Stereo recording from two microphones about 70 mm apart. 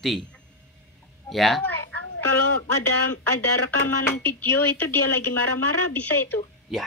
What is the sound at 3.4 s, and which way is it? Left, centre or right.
Speech, left.